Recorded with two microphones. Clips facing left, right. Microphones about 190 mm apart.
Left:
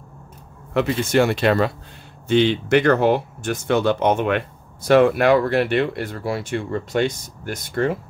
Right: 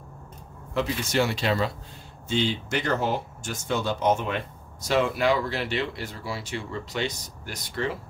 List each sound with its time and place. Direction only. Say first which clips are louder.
0.7 s speech: left 7 dB; 55° left (ahead or behind)